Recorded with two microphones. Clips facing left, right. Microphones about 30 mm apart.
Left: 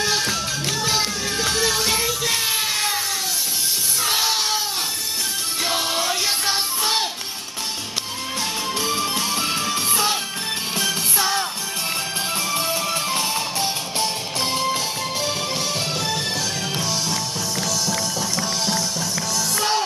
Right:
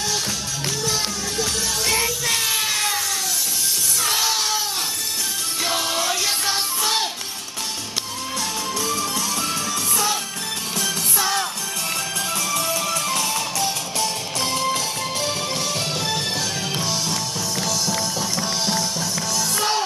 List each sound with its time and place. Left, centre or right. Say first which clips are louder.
0.8 s music: left 3 dB; left
2.0 s music: even; centre
4.0 s music: left 1 dB; centre
5.7 s music: even; centre
8.7 s music: left 2 dB; left
12.9 s music: even; left
14.4 s music: even; centre
16.7 s music: even; centre